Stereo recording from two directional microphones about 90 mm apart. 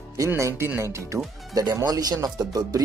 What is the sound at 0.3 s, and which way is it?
Speech, 30° right (ahead or behind).